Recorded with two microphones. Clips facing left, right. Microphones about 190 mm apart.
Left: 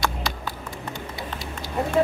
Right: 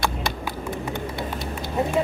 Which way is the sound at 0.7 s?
55° right (ahead or behind).